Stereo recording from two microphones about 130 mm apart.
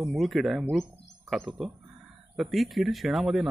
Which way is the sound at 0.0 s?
Centre (ahead or behind).